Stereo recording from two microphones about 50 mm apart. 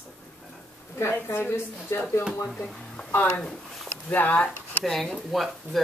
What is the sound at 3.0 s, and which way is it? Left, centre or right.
Speech, left.